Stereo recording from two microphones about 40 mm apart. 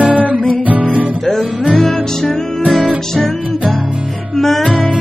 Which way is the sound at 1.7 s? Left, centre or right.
Centre.